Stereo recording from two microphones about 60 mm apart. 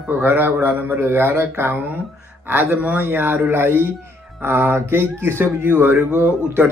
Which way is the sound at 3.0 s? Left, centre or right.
Right.